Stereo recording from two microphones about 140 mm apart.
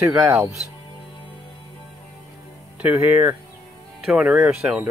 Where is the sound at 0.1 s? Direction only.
20° right (ahead or behind).